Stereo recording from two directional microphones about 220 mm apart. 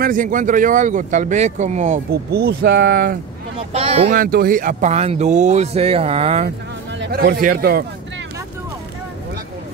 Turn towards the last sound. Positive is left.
turn(degrees=-40)  # may be behind; listen again after turning